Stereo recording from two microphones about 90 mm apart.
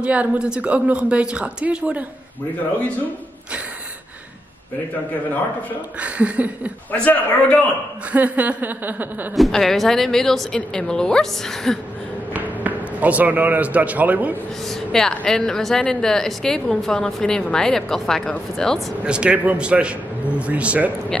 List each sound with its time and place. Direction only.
0.0 s speech: 15° right (ahead or behind)
5.9 s speech: 15° right (ahead or behind)
6.9 s a man's voice: 15° left (ahead or behind)
8.1 s speech: 15° right (ahead or behind)
9.3 s speech: centre (ahead or behind)
12.4 s speech: 20° right (ahead or behind)
14.6 s speech: 5° left (ahead or behind)
19.0 s speech: 10° right (ahead or behind)